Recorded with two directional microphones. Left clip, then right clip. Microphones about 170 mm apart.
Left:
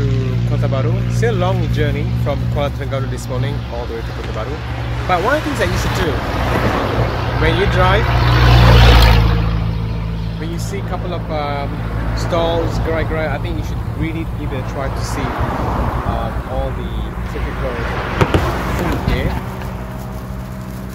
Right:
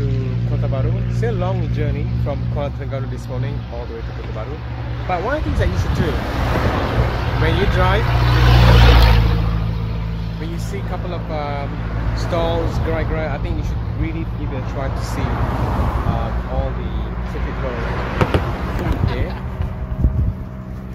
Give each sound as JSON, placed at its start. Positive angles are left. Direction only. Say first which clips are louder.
{"t": 0.7, "sound": "speech", "louder": "left 5 dB", "side_deg": 5}
{"t": 5.1, "sound": "speech", "louder": "left 6 dB", "side_deg": 5}
{"t": 6.5, "sound": "speech", "louder": "left 3 dB", "side_deg": 60}
{"t": 7.3, "sound": "speech", "louder": "left 4 dB", "side_deg": 5}
{"t": 8.1, "sound": "speech", "louder": "left 3 dB", "side_deg": 15}
{"t": 8.7, "sound": "boat", "louder": "left 3 dB", "side_deg": 55}
{"t": 9.1, "sound": "a sound", "louder": "left 4 dB", "side_deg": 35}
{"t": 11.1, "sound": "speech", "louder": "left 4 dB", "side_deg": 5}
{"t": 15.1, "sound": "speech", "louder": "left 4 dB", "side_deg": 65}
{"t": 17.7, "sound": "speech", "louder": "left 3 dB", "side_deg": 65}